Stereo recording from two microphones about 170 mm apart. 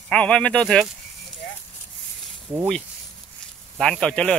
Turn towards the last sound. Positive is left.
turn(degrees=5)  # may be behind; listen again after turning